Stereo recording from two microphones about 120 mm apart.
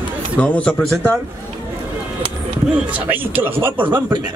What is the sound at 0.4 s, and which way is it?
Speech, 10° left (ahead or behind).